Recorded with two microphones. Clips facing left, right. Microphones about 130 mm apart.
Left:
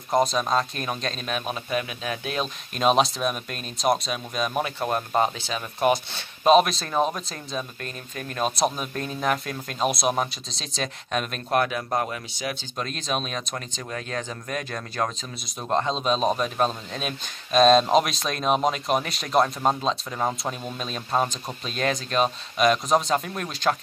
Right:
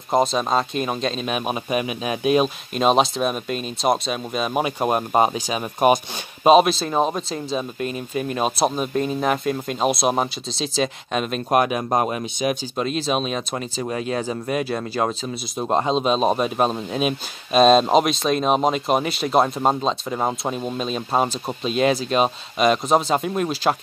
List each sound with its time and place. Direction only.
0.2 s speech: centre (ahead or behind)
1.3 s speech: 15° right (ahead or behind)
2.7 s speech: centre (ahead or behind)
4.8 s speech: 15° right (ahead or behind)
6.4 s speech: 5° right (ahead or behind)
7.0 s speech: 25° right (ahead or behind)
7.8 s speech: 10° right (ahead or behind)
11.5 s speech: 20° right (ahead or behind)
12.7 s speech: 5° right (ahead or behind)
20.7 s speech: centre (ahead or behind)